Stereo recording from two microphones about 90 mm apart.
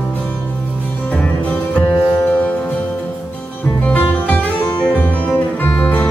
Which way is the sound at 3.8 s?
20° left (ahead or behind).